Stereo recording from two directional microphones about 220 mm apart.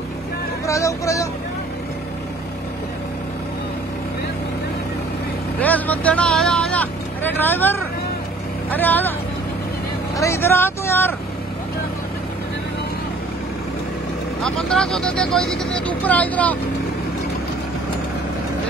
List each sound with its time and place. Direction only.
0.7 s speech: 15° left (ahead or behind)
5.6 s speech: 5° left (ahead or behind)
10.1 s speech: 15° left (ahead or behind)
14.4 s speech: centre (ahead or behind)